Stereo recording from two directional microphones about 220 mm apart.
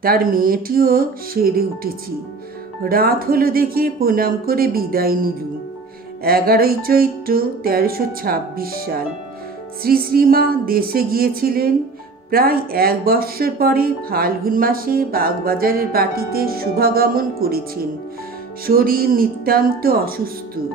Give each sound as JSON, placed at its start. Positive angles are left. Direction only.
{"t": 0.0, "sound": "speech", "side_deg": -40}
{"t": 18.7, "sound": "speech", "side_deg": -45}